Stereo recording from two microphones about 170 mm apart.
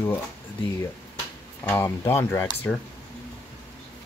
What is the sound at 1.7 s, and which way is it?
Speech, 15° left (ahead or behind).